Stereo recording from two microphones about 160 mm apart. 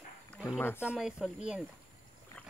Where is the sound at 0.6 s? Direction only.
15° left (ahead or behind).